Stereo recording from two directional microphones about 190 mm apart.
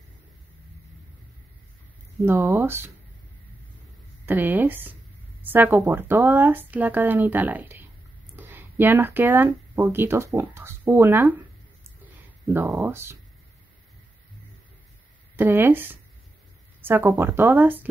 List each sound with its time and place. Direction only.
2.2 s speech: 10° right (ahead or behind)
4.3 s speech: 10° right (ahead or behind)
15.3 s speech: 10° right (ahead or behind)